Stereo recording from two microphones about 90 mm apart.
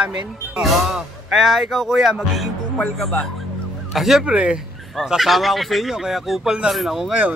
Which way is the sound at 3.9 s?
5° right (ahead or behind).